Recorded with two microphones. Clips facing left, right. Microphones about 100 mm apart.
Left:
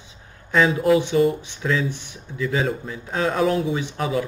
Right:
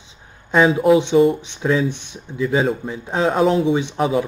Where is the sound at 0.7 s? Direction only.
5° right (ahead or behind).